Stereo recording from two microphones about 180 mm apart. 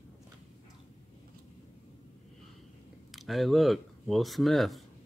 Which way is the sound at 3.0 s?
Centre (ahead or behind).